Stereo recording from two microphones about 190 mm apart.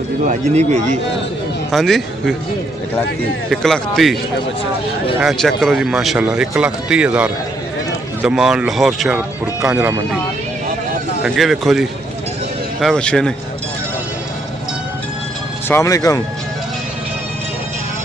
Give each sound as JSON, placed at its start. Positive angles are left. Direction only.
{"t": 0.3, "sound": "speech", "side_deg": -35}
{"t": 1.7, "sound": "speech", "side_deg": 0}
{"t": 3.4, "sound": "speech", "side_deg": 0}
{"t": 5.2, "sound": "speech", "side_deg": 0}
{"t": 11.2, "sound": "speech", "side_deg": 0}
{"t": 15.7, "sound": "speech", "side_deg": 15}